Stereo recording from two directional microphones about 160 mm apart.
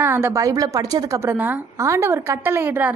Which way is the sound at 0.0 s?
15° right (ahead or behind).